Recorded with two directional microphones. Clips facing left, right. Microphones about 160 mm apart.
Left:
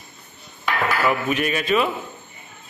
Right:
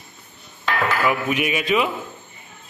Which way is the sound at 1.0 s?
10° right (ahead or behind).